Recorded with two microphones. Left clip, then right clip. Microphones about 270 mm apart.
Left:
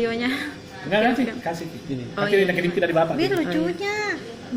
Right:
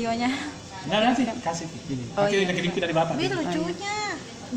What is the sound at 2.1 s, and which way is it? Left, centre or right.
A woman's voice, centre.